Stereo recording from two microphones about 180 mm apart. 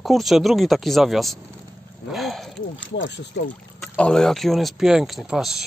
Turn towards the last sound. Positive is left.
turn(degrees=-5)  # may be behind; listen again after turning